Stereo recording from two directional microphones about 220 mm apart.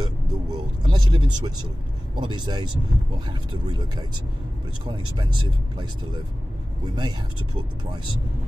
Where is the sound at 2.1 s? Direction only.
20° right (ahead or behind).